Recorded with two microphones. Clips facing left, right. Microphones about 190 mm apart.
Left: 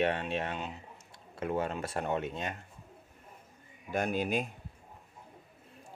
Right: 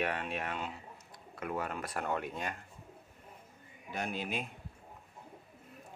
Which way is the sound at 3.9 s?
50° left (ahead or behind).